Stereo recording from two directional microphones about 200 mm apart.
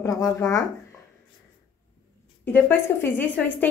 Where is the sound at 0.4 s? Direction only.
15° left (ahead or behind).